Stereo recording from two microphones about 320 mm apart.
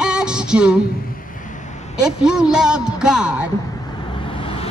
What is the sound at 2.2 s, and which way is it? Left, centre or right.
A woman's voice, centre.